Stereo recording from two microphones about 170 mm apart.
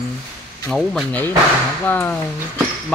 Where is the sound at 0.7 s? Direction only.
5° left (ahead or behind).